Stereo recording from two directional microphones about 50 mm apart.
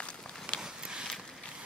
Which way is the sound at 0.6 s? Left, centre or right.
Centre.